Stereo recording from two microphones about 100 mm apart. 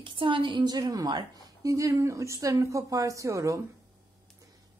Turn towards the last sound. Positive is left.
turn(degrees=-30)  # may be behind; listen again after turning